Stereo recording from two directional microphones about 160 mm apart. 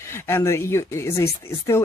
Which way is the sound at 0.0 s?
15° left (ahead or behind).